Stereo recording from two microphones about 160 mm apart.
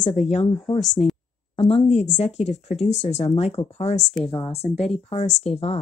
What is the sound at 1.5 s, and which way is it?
Speech, 40° left (ahead or behind).